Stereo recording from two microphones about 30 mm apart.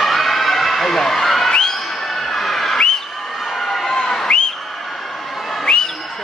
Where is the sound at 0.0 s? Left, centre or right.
Centre.